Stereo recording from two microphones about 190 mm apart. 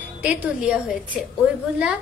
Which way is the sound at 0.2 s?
5° right (ahead or behind).